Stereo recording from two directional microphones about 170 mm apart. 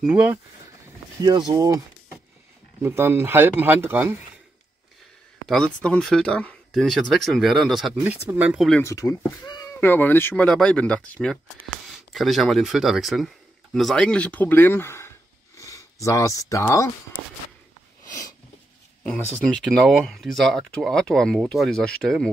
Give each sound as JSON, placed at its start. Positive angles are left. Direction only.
{"t": 0.0, "sound": "speech", "side_deg": -10}
{"t": 1.2, "sound": "speech", "side_deg": -25}
{"t": 5.5, "sound": "speech", "side_deg": 5}
{"t": 8.0, "sound": "speech", "side_deg": -10}
{"t": 8.8, "sound": "speech", "side_deg": 20}
{"t": 19.5, "sound": "speech", "side_deg": 0}